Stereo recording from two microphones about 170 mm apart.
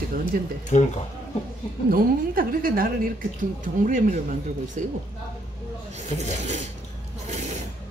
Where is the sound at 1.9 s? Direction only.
55° right (ahead or behind).